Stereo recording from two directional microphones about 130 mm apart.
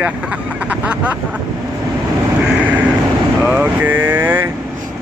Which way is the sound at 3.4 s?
10° right (ahead or behind).